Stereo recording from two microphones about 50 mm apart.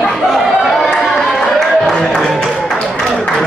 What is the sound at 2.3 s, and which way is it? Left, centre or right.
Music, centre.